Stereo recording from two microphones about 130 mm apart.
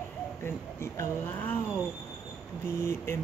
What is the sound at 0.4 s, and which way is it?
Speech, 20° left (ahead or behind).